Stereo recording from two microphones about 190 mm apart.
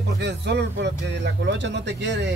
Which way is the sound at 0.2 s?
65° right (ahead or behind).